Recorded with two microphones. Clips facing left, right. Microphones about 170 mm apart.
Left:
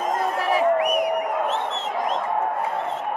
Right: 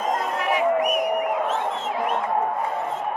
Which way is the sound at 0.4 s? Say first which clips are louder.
Left 2 dB; 35° left (ahead or behind).